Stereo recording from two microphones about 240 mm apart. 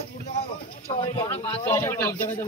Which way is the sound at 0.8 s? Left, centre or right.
Left.